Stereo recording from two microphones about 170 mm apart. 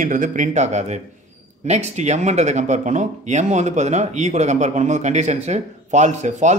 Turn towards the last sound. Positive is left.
turn(degrees=-45)  # may be behind; listen again after turning